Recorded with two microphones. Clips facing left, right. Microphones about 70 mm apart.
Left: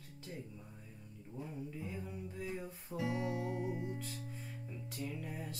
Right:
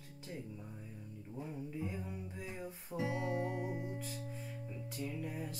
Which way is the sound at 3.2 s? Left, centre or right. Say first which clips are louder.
Right 1 dB; right.